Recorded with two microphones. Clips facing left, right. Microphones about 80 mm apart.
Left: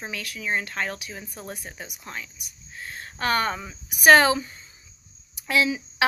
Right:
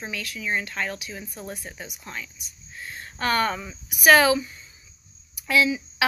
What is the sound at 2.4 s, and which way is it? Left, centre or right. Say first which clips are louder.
Speech: even; right.